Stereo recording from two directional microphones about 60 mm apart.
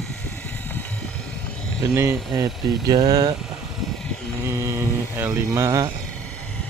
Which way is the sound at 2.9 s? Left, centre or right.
Right.